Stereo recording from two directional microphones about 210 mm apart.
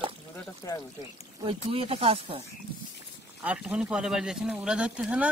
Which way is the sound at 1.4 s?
25° right (ahead or behind).